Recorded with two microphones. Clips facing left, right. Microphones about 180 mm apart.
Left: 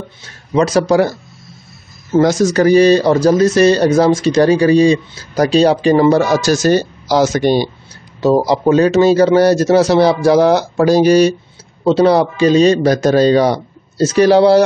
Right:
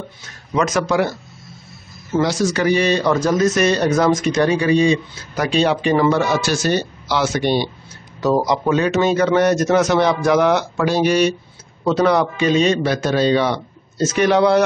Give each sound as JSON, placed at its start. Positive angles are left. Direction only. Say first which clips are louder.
{"t": 0.6, "sound": "a man's voice", "louder": "left 6 dB", "side_deg": 35}
{"t": 2.1, "sound": "a man's voice", "louder": "left 7 dB", "side_deg": 45}